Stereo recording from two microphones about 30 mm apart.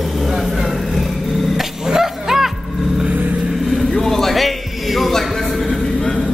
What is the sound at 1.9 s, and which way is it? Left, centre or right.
Music, centre.